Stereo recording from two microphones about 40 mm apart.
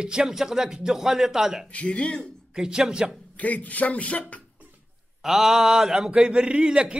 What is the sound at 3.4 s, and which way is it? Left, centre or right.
A man's voice, left.